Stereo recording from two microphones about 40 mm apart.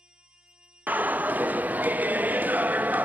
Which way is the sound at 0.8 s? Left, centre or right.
Right.